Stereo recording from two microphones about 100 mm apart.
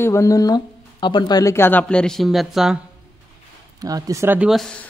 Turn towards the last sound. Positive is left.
turn(degrees=5)  # may be behind; listen again after turning